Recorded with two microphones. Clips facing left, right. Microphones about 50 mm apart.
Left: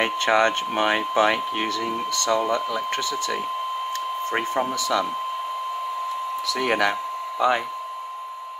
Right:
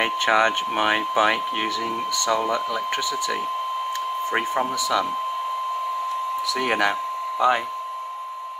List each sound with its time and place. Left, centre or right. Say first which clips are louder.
0.0 s speech: even; centre
4.3 s speech: even; centre
6.5 s speech: left 1 dB; centre